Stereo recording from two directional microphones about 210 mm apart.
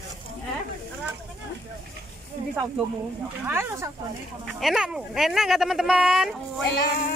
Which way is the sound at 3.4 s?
10° right (ahead or behind).